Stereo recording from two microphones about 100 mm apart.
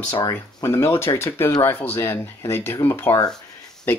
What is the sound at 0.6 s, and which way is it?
Speech, 25° left (ahead or behind).